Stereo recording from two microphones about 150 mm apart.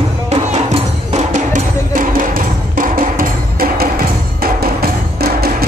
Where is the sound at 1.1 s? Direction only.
55° right (ahead or behind).